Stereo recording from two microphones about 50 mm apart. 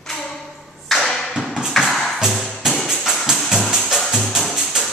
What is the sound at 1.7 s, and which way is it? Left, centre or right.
Music, centre.